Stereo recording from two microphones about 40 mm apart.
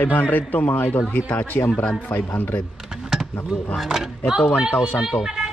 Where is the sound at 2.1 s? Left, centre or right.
Left.